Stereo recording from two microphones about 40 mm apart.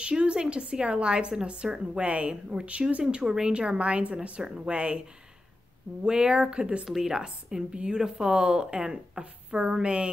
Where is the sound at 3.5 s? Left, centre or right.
Right.